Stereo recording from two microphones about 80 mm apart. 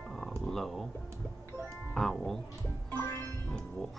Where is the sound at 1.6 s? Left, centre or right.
Centre.